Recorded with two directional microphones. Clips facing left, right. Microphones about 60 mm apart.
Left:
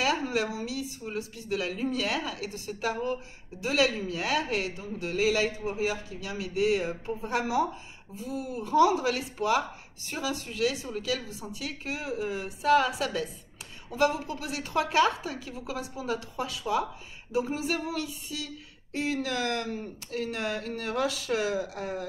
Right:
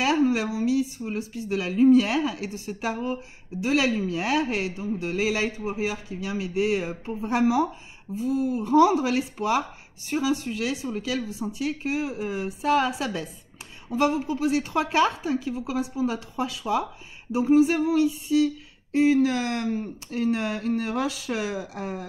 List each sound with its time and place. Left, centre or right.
0.0 s speech: right